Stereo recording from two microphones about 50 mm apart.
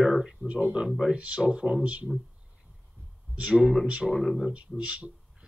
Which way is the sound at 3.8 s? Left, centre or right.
Centre.